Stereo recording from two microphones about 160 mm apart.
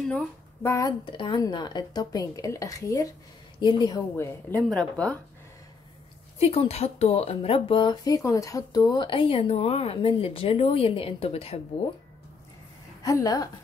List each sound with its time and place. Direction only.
0.0 s speech: 10° left (ahead or behind)
4.5 s a woman's voice: 5° left (ahead or behind)
6.4 s speech: 40° left (ahead or behind)
13.0 s speech: 20° left (ahead or behind)